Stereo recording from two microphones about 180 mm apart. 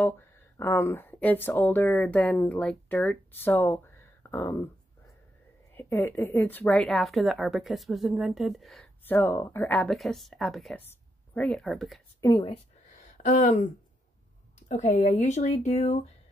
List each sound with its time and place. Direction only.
0.6 s a woman's voice: 15° left (ahead or behind)
12.2 s speech: 20° left (ahead or behind)
13.2 s speech: 45° left (ahead or behind)
14.7 s speech: 40° left (ahead or behind)